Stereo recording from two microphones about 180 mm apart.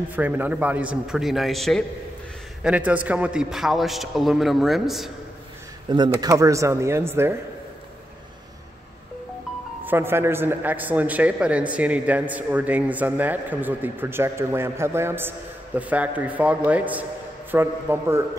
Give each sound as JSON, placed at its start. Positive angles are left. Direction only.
{"t": 0.1, "sound": "a man's voice", "side_deg": -10}
{"t": 5.9, "sound": "a man's voice", "side_deg": -25}
{"t": 9.8, "sound": "a man's voice", "side_deg": -15}